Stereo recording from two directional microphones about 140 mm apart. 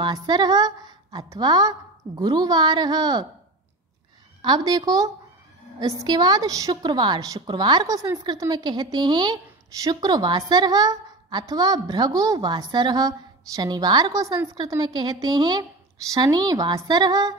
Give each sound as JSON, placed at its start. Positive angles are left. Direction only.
{"t": 0.0, "sound": "a woman's voice", "side_deg": -30}
{"t": 4.4, "sound": "a woman's voice", "side_deg": -30}